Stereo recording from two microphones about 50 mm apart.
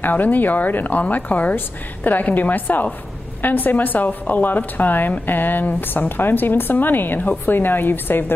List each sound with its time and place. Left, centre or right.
0.0 s speech: left